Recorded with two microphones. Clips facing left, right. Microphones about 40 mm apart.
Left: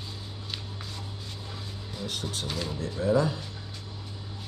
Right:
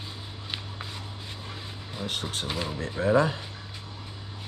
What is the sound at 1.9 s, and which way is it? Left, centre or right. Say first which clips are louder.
Speech: right 2 dB; right.